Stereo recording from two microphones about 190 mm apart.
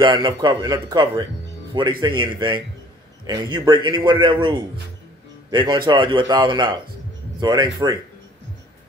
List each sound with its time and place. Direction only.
0.0 s a man's voice: 25° right (ahead or behind)